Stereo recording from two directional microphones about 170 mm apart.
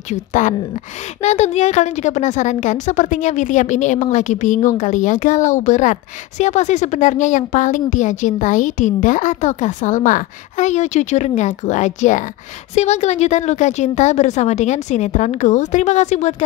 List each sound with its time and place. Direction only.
0.1 s a woman's voice: 45° left (ahead or behind)